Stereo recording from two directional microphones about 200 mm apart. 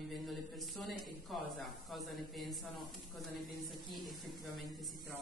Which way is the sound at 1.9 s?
Centre (ahead or behind).